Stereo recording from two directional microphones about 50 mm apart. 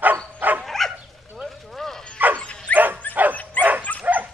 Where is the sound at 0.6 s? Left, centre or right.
Centre.